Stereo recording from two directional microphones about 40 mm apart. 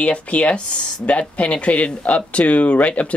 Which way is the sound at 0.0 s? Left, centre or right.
Left.